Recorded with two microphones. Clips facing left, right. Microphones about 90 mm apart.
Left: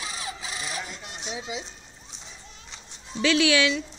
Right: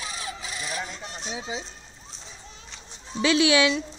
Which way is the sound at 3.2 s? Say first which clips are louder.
Right 1 dB; 20° right (ahead or behind).